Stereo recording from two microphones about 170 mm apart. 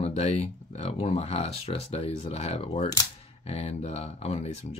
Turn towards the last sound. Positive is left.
turn(degrees=40)  # may be behind; listen again after turning